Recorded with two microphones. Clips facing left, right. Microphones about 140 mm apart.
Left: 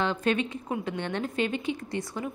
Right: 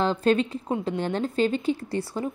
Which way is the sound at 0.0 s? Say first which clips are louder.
Right 5 dB; 35° right (ahead or behind).